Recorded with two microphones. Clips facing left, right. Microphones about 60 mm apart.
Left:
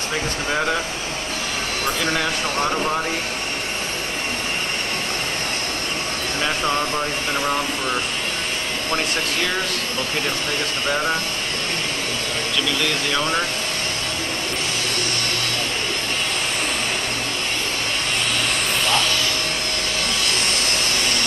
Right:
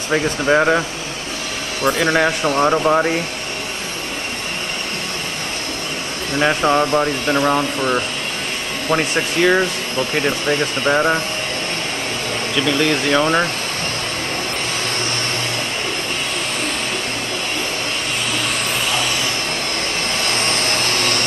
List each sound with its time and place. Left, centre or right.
0.1 s speech: right
1.9 s speech: right
6.4 s speech: right
10.9 s speech: right
12.6 s speech: right